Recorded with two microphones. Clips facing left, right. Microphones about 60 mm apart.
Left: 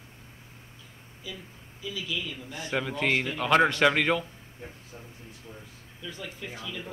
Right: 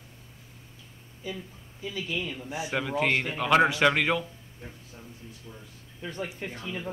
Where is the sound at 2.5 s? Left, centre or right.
Centre.